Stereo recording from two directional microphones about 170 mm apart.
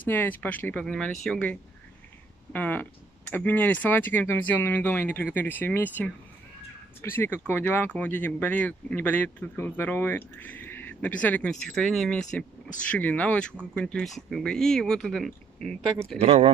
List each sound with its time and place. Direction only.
0.0 s speech: 10° left (ahead or behind)
16.2 s speech: 35° right (ahead or behind)